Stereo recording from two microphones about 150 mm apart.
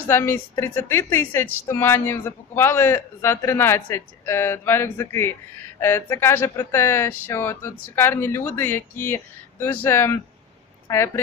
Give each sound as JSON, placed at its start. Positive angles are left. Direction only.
{"t": 0.1, "sound": "a woman's voice", "side_deg": 15}